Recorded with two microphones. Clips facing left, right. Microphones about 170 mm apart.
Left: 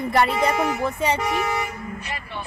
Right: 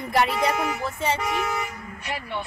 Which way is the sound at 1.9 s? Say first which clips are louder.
Right 2 dB; 60° right (ahead or behind).